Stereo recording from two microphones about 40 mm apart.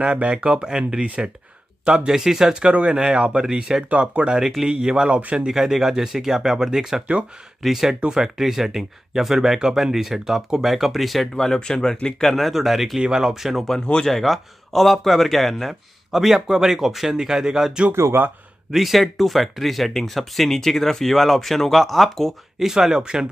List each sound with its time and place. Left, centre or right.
0.0 s a man's voice: right; by 2.5 s centre
2.9 s speech: right
5.1 s speech: right
5.5 s a man's voice: centre
7.9 s speech: centre
8.4 s a man's voice: centre
11.3 s a man's voice: centre
13.7 s speech: centre
14.0 s a man's voice: centre
17.9 s speech: right
18.7 s speech: centre
22.6 s a man's voice: centre